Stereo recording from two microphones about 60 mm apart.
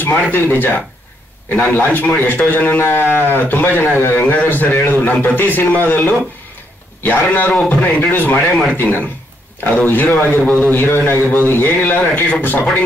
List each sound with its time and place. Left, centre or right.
0.0 s a man's voice: left
8.4 s speech: centre
8.7 s speech: left